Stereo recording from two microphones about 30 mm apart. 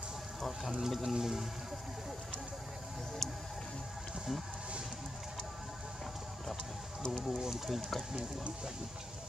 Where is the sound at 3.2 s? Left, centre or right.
Centre.